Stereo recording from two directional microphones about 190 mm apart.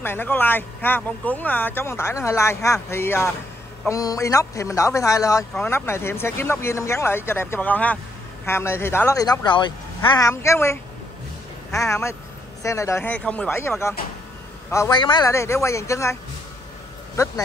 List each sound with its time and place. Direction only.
0.0 s speech: 10° left (ahead or behind)
5.5 s speech: 5° left (ahead or behind)